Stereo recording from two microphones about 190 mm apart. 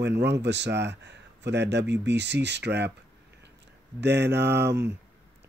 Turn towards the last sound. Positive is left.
turn(degrees=-65)  # may be behind; listen again after turning